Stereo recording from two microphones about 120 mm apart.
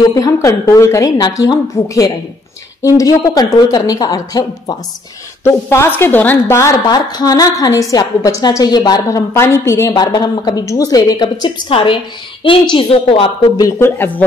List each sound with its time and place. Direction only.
0.1 s a woman's voice: 30° left (ahead or behind)
11.7 s a woman's voice: 45° left (ahead or behind)
13.6 s a woman's voice: 25° left (ahead or behind)